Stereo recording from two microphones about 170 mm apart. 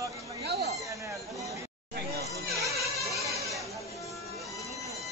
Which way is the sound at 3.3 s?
20° right (ahead or behind).